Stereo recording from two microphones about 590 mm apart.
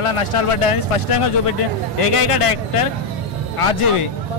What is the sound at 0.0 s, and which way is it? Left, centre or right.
Speech, left.